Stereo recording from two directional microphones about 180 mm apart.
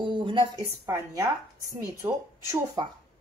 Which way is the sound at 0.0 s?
25° right (ahead or behind).